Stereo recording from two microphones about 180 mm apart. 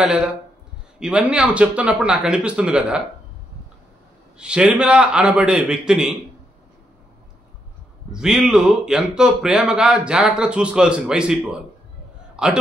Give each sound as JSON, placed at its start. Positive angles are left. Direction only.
{"t": 0.0, "sound": "speech", "side_deg": -5}
{"t": 4.4, "sound": "speech", "side_deg": -5}
{"t": 8.1, "sound": "speech", "side_deg": -5}
{"t": 12.4, "sound": "a man's voice", "side_deg": -5}